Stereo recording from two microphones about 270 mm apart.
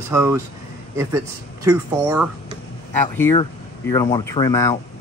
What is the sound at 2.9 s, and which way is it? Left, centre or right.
Speech, centre.